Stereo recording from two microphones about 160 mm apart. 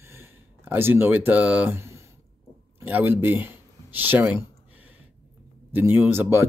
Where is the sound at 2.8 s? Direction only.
10° right (ahead or behind).